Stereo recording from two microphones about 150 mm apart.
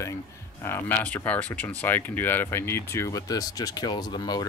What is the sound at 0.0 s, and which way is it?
Speech, 15° left (ahead or behind).